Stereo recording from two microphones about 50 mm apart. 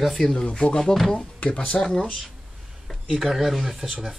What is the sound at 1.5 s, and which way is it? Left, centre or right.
Speech, centre.